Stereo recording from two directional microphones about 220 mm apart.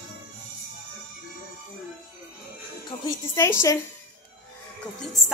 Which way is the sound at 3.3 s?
10° left (ahead or behind).